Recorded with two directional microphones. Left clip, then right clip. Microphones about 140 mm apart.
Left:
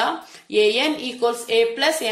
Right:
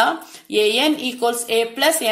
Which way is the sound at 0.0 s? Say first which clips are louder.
Right 4 dB; 30° right (ahead or behind).